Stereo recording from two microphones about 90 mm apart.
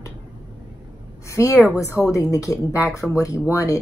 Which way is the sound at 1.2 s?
35° left (ahead or behind).